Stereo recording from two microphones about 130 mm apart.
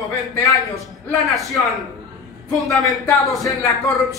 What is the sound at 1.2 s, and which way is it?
Speech, centre (ahead or behind).